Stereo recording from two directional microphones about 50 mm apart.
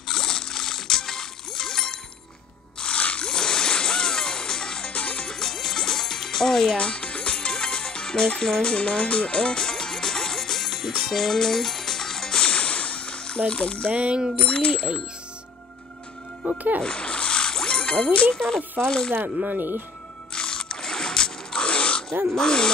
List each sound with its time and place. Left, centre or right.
0.1 s music: centre
2.8 s music: left
4.9 s music: left
5.2 s music: centre
6.8 s music: left
13.5 s speech: left
13.9 s a sound: centre
14.4 s speech: left
16.8 s music: centre
18.3 s speech: centre
19.4 s speech: right
20.3 s a sound: centre
22.3 s speech: centre